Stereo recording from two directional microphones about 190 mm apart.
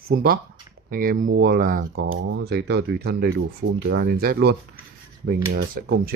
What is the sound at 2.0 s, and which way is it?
Speech, 80° right.